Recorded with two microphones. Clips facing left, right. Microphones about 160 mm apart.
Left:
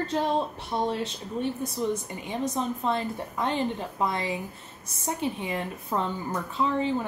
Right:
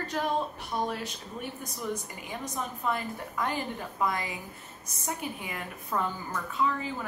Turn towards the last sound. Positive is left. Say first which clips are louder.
# left 4 dB
turn(degrees=30)  # may be behind; listen again after turning